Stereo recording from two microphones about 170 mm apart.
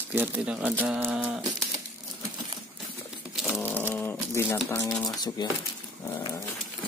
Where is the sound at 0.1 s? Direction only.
10° right (ahead or behind).